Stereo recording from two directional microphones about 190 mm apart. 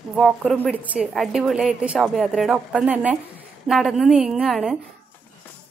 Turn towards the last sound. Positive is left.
turn(degrees=0)  # may be behind; listen again after turning